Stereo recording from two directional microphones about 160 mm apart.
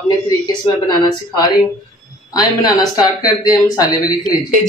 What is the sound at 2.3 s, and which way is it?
Speech, 25° left (ahead or behind).